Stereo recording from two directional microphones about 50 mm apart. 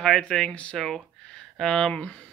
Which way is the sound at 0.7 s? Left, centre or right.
Centre.